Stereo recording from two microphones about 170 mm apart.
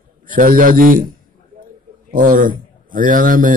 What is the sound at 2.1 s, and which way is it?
A man's voice, 55° right (ahead or behind).